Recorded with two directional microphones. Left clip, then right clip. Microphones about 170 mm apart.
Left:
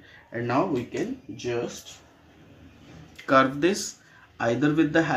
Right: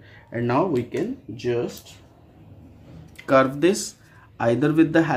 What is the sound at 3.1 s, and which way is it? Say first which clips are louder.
Speech: right 2 dB; 10° right (ahead or behind).